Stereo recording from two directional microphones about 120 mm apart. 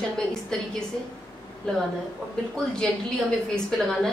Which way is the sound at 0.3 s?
5° left (ahead or behind).